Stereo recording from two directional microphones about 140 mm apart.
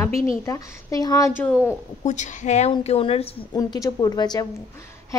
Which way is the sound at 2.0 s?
55° left (ahead or behind).